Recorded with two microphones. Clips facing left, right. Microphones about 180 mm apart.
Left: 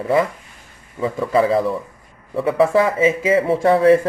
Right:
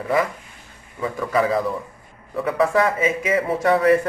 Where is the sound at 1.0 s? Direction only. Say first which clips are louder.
Left 4 dB; 25° left (ahead or behind).